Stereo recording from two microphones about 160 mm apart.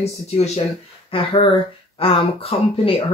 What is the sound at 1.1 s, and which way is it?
Speech, 35° left (ahead or behind).